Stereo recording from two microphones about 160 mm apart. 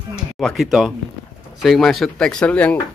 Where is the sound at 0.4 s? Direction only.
Centre (ahead or behind).